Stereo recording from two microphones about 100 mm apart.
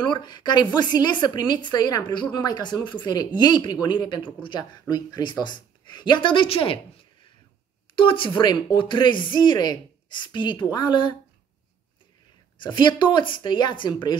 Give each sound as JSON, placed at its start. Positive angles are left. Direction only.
{"t": 0.0, "sound": "a woman's voice", "side_deg": 50}
{"t": 7.9, "sound": "a woman's voice", "side_deg": 60}
{"t": 12.5, "sound": "a woman's voice", "side_deg": 50}